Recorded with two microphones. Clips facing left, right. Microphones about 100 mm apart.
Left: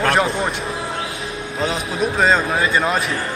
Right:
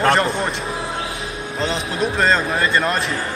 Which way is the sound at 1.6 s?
Centre (ahead or behind).